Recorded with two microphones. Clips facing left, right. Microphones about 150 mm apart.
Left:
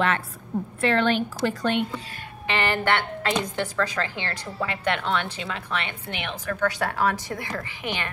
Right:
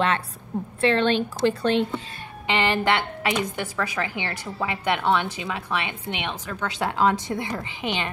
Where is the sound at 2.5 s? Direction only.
15° right (ahead or behind).